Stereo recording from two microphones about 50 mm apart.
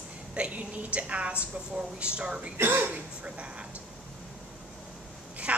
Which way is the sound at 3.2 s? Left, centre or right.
Right.